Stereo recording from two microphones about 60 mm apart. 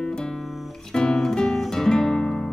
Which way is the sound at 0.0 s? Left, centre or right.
Centre.